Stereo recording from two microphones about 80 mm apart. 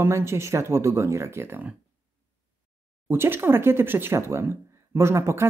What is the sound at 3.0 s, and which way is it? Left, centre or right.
Speech, right.